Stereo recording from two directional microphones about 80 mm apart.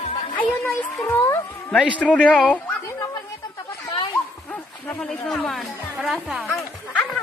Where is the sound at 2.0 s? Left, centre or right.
Centre.